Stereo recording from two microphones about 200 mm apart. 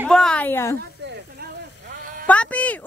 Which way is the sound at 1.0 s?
55° right (ahead or behind).